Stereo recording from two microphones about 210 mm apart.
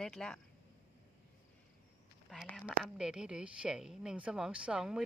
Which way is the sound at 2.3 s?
Centre (ahead or behind).